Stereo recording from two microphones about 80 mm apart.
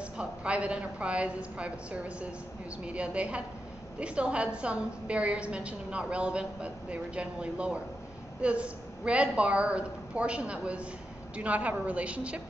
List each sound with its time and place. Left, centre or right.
0.2 s a woman's voice: centre